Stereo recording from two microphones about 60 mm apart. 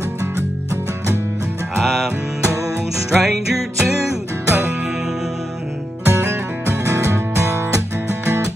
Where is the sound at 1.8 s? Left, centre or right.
Centre.